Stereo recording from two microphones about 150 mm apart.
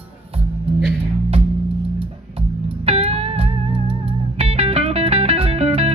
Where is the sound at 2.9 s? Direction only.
40° right (ahead or behind).